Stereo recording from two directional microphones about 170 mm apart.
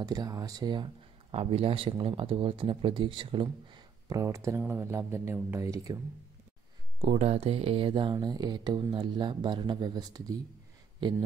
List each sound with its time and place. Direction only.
0.0 s speech: 20° right (ahead or behind)
1.3 s speech: 35° right (ahead or behind); by 5.9 s 15° right (ahead or behind)
7.0 s speech: 40° right (ahead or behind)